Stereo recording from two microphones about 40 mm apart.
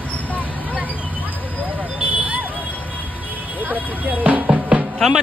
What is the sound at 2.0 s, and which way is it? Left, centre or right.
Vehicle, right.